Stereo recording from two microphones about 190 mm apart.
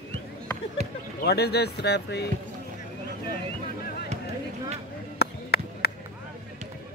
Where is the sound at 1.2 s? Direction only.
60° left (ahead or behind).